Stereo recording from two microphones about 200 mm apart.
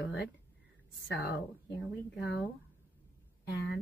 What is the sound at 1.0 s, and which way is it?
Speech, 55° left (ahead or behind).